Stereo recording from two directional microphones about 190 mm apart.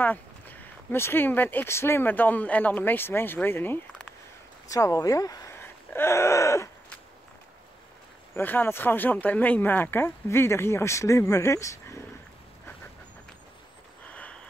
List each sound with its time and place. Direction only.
0.0 s speech: 10° left (ahead or behind)
8.4 s speech: 10° left (ahead or behind)
14.0 s a sound: 5° left (ahead or behind)